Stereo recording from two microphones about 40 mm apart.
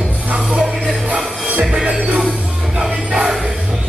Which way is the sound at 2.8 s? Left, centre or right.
Centre.